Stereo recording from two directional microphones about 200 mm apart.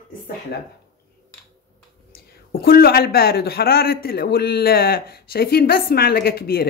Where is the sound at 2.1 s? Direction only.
50° left (ahead or behind).